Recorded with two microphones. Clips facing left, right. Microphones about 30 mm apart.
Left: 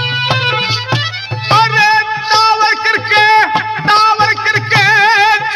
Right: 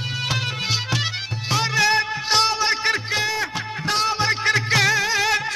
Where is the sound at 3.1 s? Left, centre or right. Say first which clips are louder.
Left 15 dB; left.